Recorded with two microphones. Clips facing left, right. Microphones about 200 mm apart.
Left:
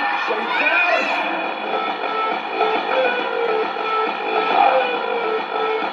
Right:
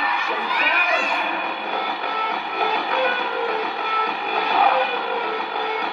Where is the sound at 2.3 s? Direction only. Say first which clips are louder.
Left 5 dB; 50° left (ahead or behind).